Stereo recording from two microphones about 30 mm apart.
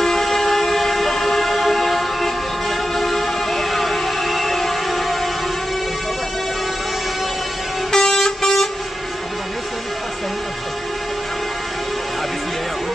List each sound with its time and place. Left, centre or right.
0.0 s train: centre
2.9 s music: centre
7.9 s vehicle: centre